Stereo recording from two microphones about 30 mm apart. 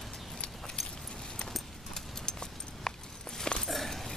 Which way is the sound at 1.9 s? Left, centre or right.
Left.